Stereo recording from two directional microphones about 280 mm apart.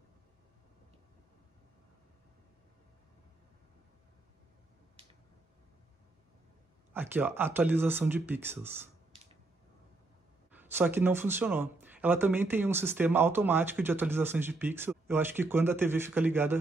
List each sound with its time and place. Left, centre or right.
6.9 s speech: centre
9.1 s a sound: right
10.5 s speech: centre